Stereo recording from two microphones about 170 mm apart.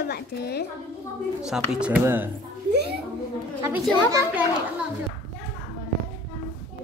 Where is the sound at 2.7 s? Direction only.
75° right (ahead or behind).